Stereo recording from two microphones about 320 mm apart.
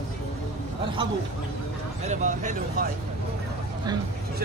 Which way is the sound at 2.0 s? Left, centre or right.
Right.